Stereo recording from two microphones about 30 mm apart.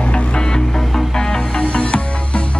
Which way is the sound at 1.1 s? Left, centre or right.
Centre.